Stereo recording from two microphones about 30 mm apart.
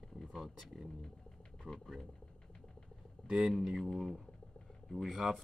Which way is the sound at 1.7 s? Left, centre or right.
Right.